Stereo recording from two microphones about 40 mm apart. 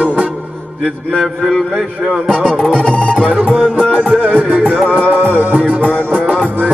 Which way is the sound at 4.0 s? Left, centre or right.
Right.